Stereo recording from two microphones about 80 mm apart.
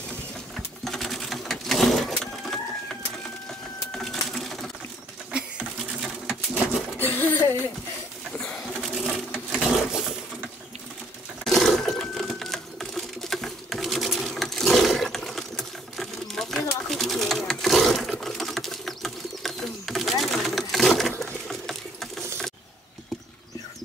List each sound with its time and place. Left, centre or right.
0.8 s sewing machine: centre
3.9 s sewing machine: centre
6.2 s pigeon: centre
7.0 s music: left
8.5 s pigeon: centre
9.3 s sewing machine: centre
11.4 s sewing machine: centre
16.9 s pigeon: centre
21.2 s sewing machine: centre